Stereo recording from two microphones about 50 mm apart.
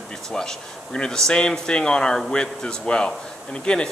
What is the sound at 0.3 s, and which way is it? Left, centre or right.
Speech, centre.